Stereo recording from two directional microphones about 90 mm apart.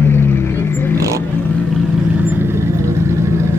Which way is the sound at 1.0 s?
35° right (ahead or behind).